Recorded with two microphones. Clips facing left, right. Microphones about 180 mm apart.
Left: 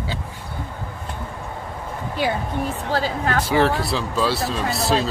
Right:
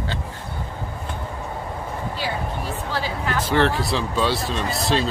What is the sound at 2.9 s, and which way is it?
Speech, 50° left (ahead or behind).